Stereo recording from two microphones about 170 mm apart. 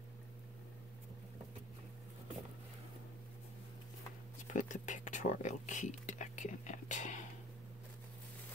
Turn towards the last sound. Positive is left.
turn(degrees=45)  # may be behind; listen again after turning